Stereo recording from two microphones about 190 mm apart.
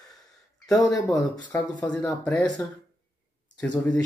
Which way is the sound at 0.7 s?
20° left (ahead or behind).